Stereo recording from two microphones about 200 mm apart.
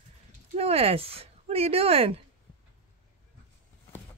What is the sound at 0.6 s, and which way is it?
Speech, 30° right (ahead or behind).